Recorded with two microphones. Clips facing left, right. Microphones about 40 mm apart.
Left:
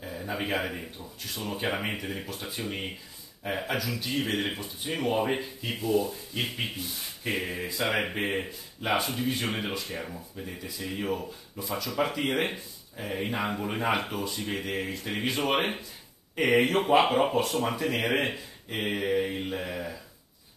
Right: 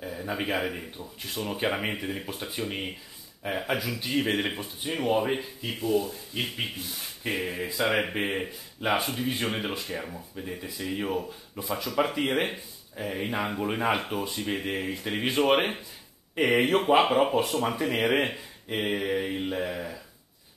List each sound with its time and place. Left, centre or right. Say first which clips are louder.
0.0 s a man's voice: right 2 dB; centre
0.9 s speech: right 3 dB; centre
2.2 s speech: right 2 dB; centre
3.7 s speech: right 4 dB; centre
17.7 s speech: right 1 dB; centre
18.2 s speech: right 1 dB; centre